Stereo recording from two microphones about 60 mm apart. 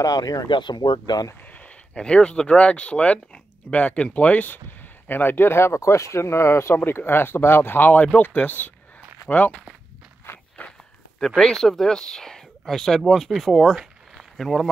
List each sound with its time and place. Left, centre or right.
0.0 s speech: left
2.0 s speech: centre
11.1 s speech: centre